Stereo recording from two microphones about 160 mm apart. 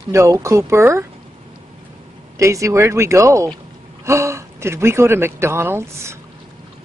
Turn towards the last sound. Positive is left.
turn(degrees=-15)  # may be behind; listen again after turning